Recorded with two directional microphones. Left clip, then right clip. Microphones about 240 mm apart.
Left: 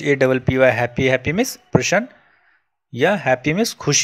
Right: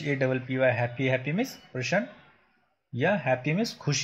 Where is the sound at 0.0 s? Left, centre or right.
Left.